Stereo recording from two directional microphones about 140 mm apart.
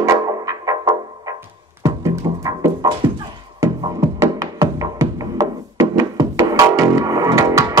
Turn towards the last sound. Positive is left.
turn(degrees=-25)  # may be behind; listen again after turning